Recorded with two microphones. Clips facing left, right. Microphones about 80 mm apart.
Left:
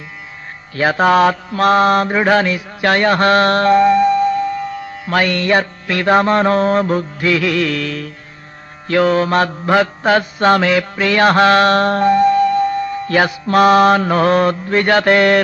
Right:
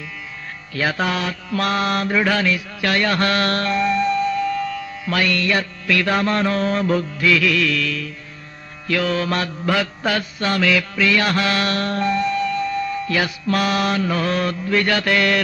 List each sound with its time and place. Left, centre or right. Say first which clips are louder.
0.7 s mantra: left 9 dB; left
1.5 s mantra: left 4 dB; left